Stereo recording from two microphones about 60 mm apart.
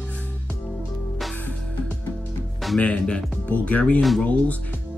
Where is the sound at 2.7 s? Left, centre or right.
Centre.